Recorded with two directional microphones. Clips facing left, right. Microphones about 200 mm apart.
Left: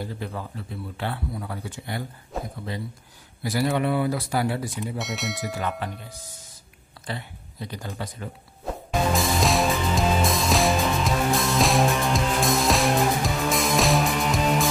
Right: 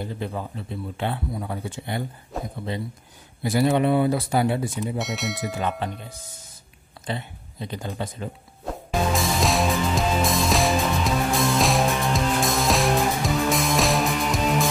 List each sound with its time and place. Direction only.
0.0 s a man's voice: 20° right (ahead or behind)
2.3 s a sound: centre (ahead or behind)
3.4 s a man's voice: 25° right (ahead or behind)
4.9 s speech: centre (ahead or behind)
5.6 s a man's voice: 20° right (ahead or behind)
7.1 s speech: 20° right (ahead or behind)
9.1 s music: centre (ahead or behind)